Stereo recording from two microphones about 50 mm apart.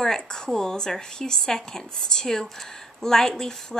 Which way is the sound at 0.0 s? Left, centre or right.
Centre.